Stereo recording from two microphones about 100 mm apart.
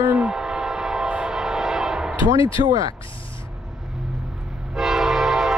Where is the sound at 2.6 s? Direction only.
50° right (ahead or behind).